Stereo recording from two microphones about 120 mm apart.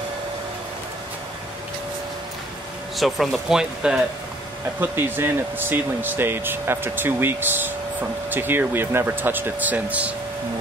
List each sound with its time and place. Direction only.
3.0 s speech: centre (ahead or behind)
4.7 s speech: 20° right (ahead or behind)